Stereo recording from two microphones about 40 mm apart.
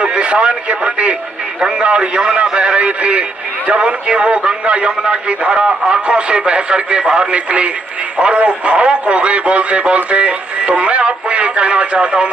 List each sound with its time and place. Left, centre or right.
0.0 s speech: right